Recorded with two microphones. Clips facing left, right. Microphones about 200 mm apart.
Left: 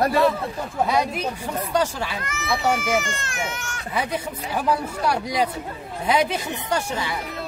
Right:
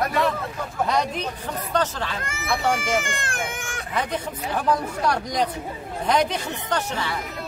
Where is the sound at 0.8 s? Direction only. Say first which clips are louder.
Left 1 dB; 10° left (ahead or behind).